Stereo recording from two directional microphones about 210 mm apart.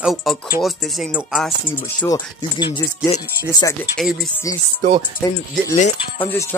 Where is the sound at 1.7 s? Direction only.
10° left (ahead or behind).